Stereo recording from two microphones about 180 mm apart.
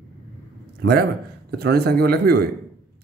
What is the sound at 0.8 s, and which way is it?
A man's voice, 65° right (ahead or behind).